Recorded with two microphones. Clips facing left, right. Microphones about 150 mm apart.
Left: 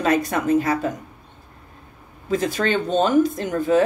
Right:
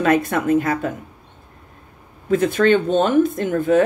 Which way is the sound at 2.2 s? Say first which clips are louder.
Right 6 dB; 55° right (ahead or behind).